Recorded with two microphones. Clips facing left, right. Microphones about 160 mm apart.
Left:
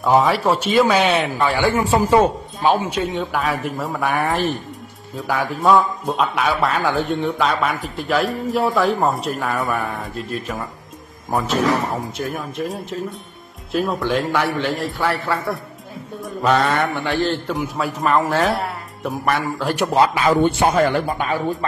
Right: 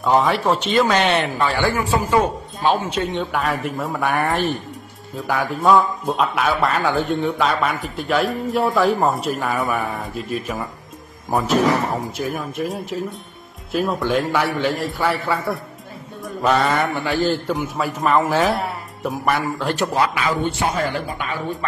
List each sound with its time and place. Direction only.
0.0 s a man's voice: centre (ahead or behind)
1.8 s a man's voice: 30° left (ahead or behind)
2.7 s a man's voice: 10° left (ahead or behind)
19.9 s a man's voice: 30° left (ahead or behind)
20.4 s speech: 60° left (ahead or behind)